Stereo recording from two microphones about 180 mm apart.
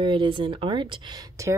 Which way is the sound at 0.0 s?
25° right (ahead or behind).